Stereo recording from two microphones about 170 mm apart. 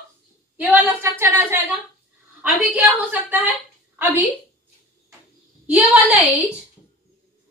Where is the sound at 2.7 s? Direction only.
10° right (ahead or behind).